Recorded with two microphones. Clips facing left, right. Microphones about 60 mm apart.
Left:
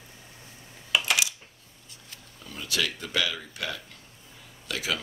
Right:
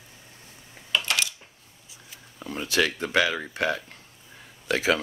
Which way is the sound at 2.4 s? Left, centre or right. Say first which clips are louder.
Right 6 dB; right.